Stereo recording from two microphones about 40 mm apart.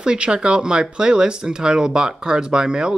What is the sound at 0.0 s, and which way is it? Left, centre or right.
Speech, right.